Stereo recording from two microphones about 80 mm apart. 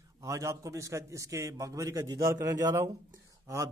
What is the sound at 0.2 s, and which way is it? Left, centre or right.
Speech, right.